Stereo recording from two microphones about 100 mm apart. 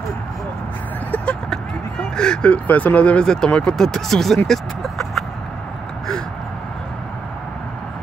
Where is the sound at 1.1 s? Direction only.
10° left (ahead or behind).